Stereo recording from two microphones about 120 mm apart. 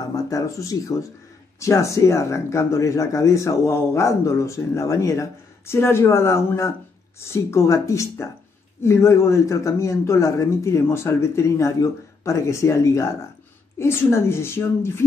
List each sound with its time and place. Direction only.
0.1 s speech: 30° left (ahead or behind)